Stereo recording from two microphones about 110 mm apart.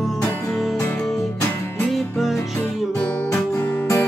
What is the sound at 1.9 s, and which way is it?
Music, centre (ahead or behind).